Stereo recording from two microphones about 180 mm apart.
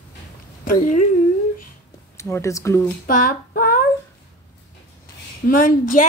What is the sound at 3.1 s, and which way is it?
Female singing, 50° left (ahead or behind).